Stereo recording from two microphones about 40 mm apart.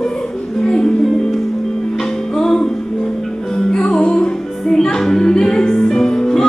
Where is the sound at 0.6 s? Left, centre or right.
Centre.